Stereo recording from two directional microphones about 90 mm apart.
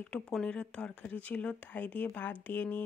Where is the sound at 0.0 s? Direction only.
15° left (ahead or behind).